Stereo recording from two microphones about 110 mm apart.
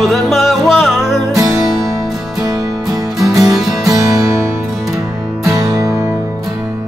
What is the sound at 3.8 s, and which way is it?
Music, 30° right (ahead or behind).